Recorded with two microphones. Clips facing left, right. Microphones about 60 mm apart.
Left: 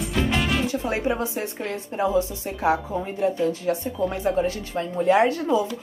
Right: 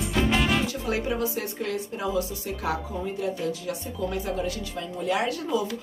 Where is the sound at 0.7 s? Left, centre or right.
Left.